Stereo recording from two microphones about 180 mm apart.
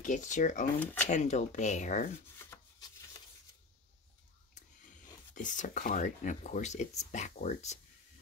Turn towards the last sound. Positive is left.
turn(degrees=40)  # may be behind; listen again after turning